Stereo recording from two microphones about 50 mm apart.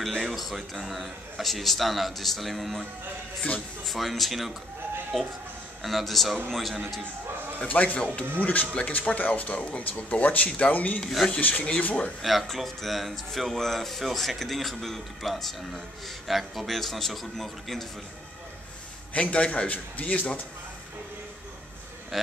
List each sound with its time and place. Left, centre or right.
0.2 s speech: centre
3.8 s speech: centre
7.6 s speech: left
11.0 s speech: centre
11.2 s speech: left
12.2 s speech: centre
19.1 s speech: left
22.1 s speech: centre